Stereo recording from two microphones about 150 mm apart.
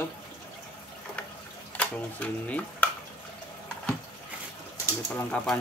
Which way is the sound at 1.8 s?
10° left (ahead or behind).